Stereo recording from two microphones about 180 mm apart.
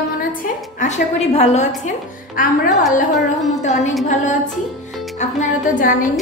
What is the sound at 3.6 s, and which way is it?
Speech, 40° left (ahead or behind).